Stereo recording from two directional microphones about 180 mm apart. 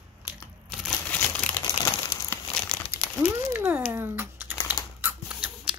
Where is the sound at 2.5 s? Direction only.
5° left (ahead or behind).